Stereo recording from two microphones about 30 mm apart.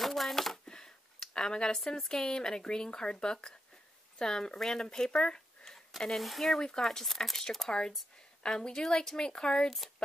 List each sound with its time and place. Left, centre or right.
0.0 s a sound: centre
0.7 s a sound: left
1.3 s speech: left
4.8 s speech: left
5.9 s speech: centre
6.2 s speech: centre
6.6 s speech: centre